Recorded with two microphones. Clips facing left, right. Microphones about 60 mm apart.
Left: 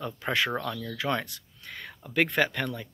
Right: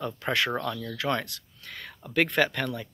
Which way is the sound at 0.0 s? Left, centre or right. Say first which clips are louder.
Right 1 dB; centre.